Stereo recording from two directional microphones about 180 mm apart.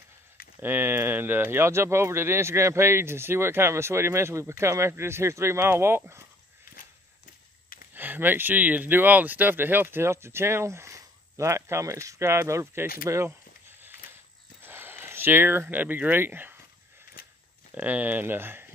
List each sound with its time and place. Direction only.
0.6 s speech: 10° right (ahead or behind)
7.9 s speech: 10° right (ahead or behind)
14.6 s speech: 10° right (ahead or behind)
17.7 s speech: 10° right (ahead or behind)